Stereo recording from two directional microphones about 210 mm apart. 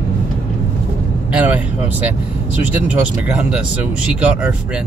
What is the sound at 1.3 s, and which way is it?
Speech, 5° right (ahead or behind).